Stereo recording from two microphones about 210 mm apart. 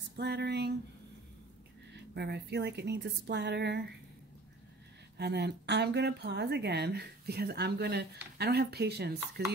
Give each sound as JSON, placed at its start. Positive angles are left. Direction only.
{"t": 0.1, "sound": "a sound", "side_deg": -55}
{"t": 2.1, "sound": "speech", "side_deg": -55}
{"t": 5.1, "sound": "speech", "side_deg": -50}